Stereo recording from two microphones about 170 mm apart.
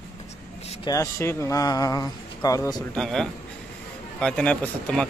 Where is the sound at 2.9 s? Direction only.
5° left (ahead or behind).